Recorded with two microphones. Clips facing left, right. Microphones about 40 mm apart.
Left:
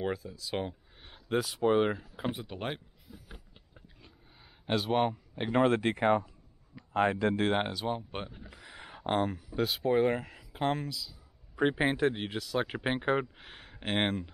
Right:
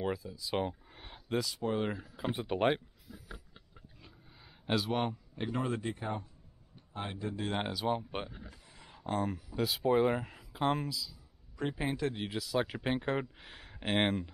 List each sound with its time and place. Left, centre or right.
0.4 s speech: centre
0.9 s a sound: centre
1.4 s speech: left
2.3 s speech: right
4.6 s speech: centre
5.5 s speech: left
6.7 s speech: left
7.6 s speech: centre
8.5 s a sound: left
9.2 s speech: centre
11.5 s a man's voice: left
12.2 s speech: centre